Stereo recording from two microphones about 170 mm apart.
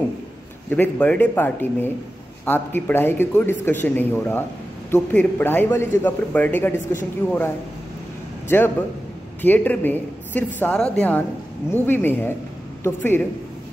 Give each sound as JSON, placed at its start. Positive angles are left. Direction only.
{"t": 0.7, "sound": "speech", "side_deg": 10}
{"t": 8.5, "sound": "speech", "side_deg": 15}